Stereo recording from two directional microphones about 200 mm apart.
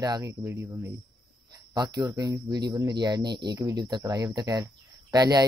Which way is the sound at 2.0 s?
20° right (ahead or behind).